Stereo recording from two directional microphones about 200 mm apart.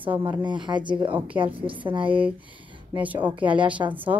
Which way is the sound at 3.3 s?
25° right (ahead or behind).